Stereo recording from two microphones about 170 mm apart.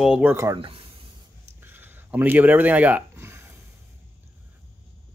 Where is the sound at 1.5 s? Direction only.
10° right (ahead or behind).